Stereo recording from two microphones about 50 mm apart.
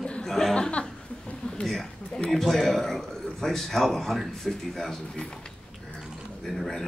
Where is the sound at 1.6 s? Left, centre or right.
Centre.